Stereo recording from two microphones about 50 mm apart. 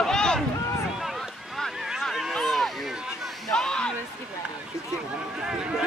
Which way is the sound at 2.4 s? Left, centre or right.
Centre.